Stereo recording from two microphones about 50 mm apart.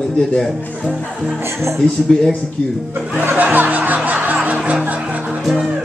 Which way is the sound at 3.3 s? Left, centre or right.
Right.